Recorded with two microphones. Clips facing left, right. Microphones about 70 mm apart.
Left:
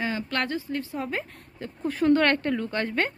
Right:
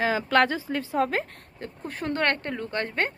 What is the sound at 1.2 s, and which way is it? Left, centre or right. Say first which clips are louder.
Speech: right 2 dB; right.